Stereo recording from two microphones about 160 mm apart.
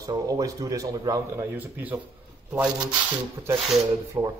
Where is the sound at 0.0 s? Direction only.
20° right (ahead or behind).